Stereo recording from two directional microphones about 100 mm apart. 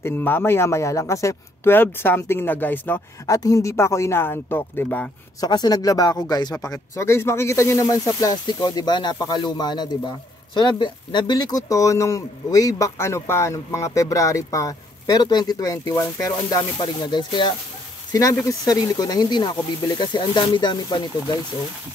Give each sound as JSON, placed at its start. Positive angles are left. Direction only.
{"t": 0.0, "sound": "speech", "side_deg": 20}
{"t": 3.3, "sound": "speech", "side_deg": 35}
{"t": 5.4, "sound": "speech", "side_deg": 40}
{"t": 8.5, "sound": "speech", "side_deg": 45}
{"t": 18.5, "sound": "speech", "side_deg": 40}